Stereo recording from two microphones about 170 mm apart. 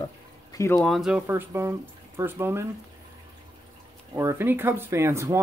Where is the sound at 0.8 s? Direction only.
Centre (ahead or behind).